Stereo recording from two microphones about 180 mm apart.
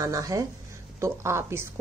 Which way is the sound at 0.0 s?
20° right (ahead or behind).